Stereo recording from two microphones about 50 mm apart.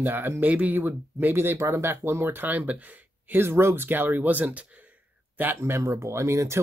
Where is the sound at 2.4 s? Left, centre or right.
Right.